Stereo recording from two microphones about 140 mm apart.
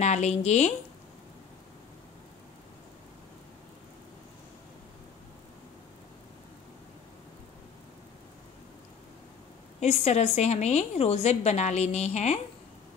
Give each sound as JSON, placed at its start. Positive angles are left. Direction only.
{"t": 0.0, "sound": "a woman's voice", "side_deg": 55}
{"t": 9.8, "sound": "a woman's voice", "side_deg": 50}